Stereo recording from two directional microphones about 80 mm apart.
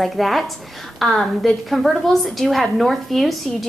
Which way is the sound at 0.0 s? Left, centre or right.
Centre.